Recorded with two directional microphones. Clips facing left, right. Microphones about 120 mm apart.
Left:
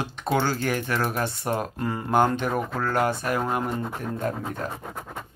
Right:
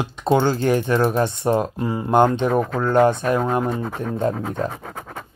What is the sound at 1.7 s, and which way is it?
Speech, 15° right (ahead or behind).